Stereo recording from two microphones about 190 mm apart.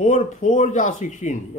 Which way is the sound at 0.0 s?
40° left (ahead or behind).